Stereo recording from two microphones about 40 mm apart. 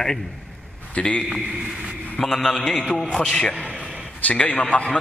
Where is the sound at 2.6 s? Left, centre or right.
Left.